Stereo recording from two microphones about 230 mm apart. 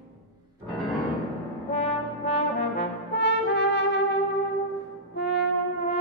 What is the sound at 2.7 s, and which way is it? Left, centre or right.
Brass instrument, left.